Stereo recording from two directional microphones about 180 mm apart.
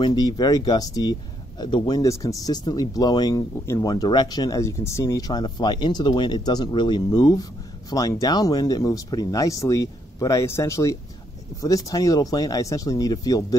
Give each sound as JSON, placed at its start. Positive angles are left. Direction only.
{"t": 0.0, "sound": "speech", "side_deg": 20}